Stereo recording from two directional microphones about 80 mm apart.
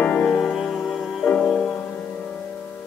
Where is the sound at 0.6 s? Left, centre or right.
Centre.